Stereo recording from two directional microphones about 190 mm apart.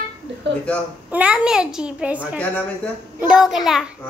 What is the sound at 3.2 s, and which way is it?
Speech, 5° right (ahead or behind).